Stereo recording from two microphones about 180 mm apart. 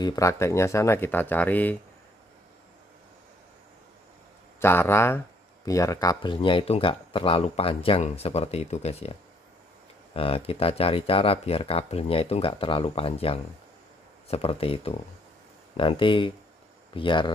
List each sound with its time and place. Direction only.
0.0 s speech: 20° left (ahead or behind)
4.6 s speech: 15° left (ahead or behind)